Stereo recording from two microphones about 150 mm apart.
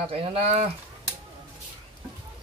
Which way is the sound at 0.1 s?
40° right (ahead or behind).